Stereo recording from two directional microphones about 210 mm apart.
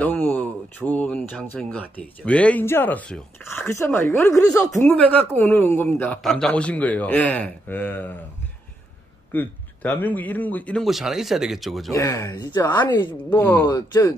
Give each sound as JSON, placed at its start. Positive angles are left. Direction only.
{"t": 0.0, "sound": "speech", "side_deg": 10}
{"t": 9.3, "sound": "speech", "side_deg": 10}
{"t": 11.9, "sound": "speech", "side_deg": 15}
{"t": 12.6, "sound": "speech", "side_deg": 10}
{"t": 12.9, "sound": "a woman's voice", "side_deg": 20}
{"t": 13.4, "sound": "a woman's voice", "side_deg": 10}